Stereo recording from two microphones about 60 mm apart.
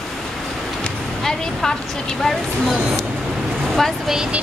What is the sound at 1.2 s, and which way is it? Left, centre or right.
Speech, centre.